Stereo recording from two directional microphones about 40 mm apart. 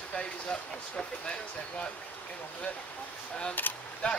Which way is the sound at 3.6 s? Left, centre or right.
Left.